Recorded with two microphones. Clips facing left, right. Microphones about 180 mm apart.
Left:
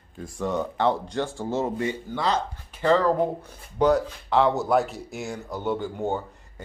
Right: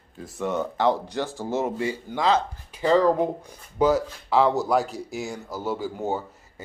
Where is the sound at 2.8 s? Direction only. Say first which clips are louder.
Right 1 dB; 10° right (ahead or behind).